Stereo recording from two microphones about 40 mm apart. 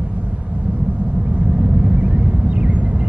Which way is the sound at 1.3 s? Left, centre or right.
Right.